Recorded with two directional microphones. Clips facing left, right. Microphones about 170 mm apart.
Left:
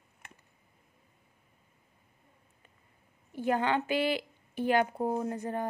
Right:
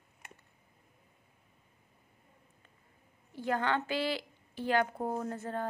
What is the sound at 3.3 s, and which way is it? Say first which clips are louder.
A woman's voice: left 3 dB; 15° left (ahead or behind).